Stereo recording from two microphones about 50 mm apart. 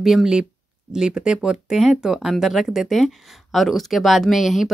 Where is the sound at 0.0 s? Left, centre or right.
Centre.